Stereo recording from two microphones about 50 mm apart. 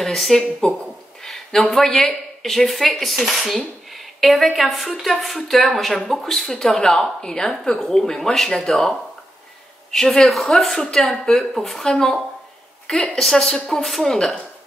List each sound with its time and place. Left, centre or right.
0.0 s a woman's voice: centre
9.8 s a woman's voice: centre